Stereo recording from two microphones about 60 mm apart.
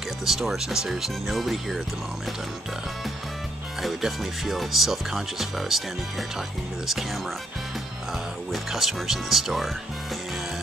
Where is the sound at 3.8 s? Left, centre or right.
Centre.